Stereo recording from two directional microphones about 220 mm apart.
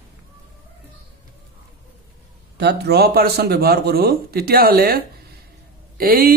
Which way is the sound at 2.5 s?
50° right (ahead or behind).